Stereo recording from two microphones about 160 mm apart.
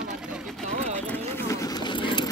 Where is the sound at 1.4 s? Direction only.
20° left (ahead or behind).